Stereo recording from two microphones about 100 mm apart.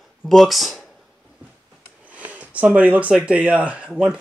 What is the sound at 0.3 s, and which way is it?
Speech, centre (ahead or behind).